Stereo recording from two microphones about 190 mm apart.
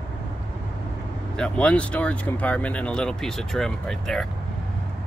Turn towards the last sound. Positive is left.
turn(degrees=0)  # may be behind; listen again after turning